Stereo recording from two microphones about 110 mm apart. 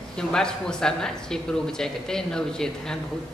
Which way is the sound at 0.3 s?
5° left (ahead or behind).